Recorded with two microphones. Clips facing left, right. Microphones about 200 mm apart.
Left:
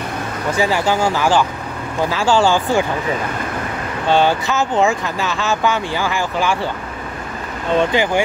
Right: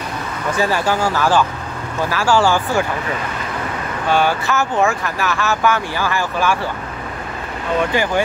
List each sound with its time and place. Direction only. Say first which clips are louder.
0.6 s speech: left 1 dB; 15° left (ahead or behind)
4.1 s speech: left 2 dB; 20° left (ahead or behind)